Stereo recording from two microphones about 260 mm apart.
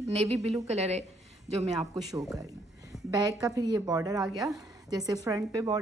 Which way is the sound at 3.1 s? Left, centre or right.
Centre.